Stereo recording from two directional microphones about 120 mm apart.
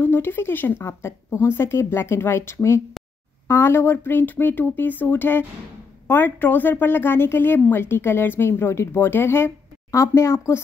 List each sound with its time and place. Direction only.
0.0 s a woman's voice: 20° left (ahead or behind)